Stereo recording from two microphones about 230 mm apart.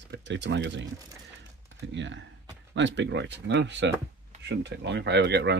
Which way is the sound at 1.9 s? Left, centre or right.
Right.